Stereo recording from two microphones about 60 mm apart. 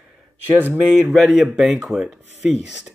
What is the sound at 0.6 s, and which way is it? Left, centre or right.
Speech, right.